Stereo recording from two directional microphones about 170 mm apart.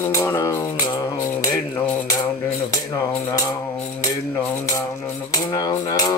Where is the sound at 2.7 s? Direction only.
20° left (ahead or behind).